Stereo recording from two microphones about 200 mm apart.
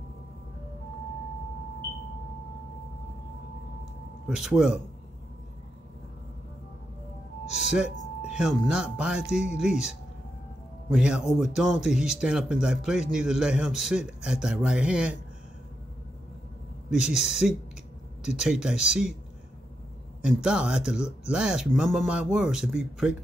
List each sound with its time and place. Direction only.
4.3 s speech: centre (ahead or behind)
7.5 s music: centre (ahead or behind)
8.3 s speech: 5° right (ahead or behind)
10.9 s a man's voice: 5° right (ahead or behind)
16.9 s speech: 5° right (ahead or behind)
20.2 s speech: 5° right (ahead or behind)